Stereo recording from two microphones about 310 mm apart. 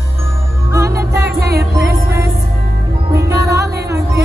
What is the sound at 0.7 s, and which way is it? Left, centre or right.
Music, centre.